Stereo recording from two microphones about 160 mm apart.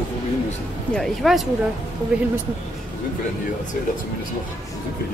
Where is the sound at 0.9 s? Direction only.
Centre (ahead or behind).